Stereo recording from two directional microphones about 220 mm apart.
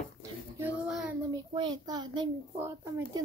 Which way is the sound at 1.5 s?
20° right (ahead or behind).